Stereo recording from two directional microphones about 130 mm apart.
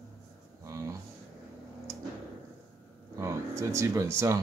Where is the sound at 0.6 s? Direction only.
25° right (ahead or behind).